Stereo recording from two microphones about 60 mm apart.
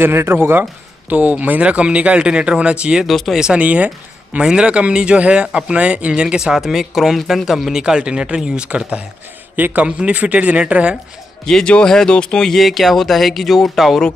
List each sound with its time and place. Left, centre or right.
0.0 s speech: right
1.0 s speech: right
3.1 s speech: centre
3.4 s speech: right; by 7.8 s centre
7.8 s speech: centre
11.4 s speech: centre